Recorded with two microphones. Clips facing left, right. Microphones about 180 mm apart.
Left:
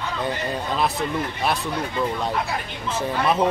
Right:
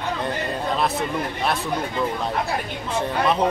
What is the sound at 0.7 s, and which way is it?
Speech, centre (ahead or behind).